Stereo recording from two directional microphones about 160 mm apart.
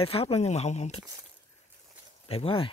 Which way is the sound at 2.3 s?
35° left (ahead or behind).